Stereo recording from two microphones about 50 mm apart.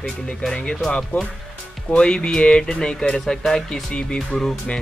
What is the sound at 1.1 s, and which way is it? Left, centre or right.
Speech, left.